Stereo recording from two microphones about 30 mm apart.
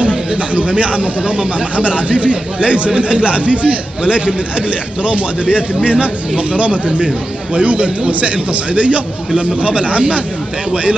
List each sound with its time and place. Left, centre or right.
0.6 s a man's voice: right
1.2 s speech: right
1.8 s a man's voice: right